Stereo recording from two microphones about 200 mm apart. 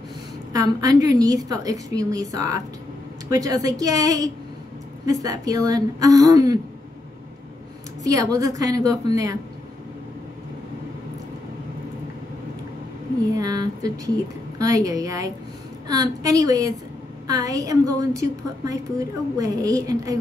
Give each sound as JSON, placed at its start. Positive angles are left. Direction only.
{"t": 0.5, "sound": "a woman's voice", "side_deg": -15}
{"t": 8.0, "sound": "a woman's voice", "side_deg": -15}
{"t": 13.3, "sound": "a woman's voice", "side_deg": -20}